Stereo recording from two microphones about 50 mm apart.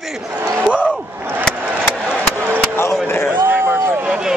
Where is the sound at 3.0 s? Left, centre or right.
Left.